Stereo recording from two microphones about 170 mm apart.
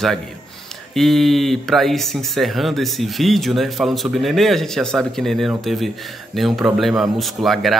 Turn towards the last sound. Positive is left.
turn(degrees=0)  # may be behind; listen again after turning